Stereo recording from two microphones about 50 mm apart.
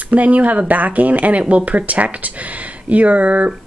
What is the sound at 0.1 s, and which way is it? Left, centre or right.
Speech, right.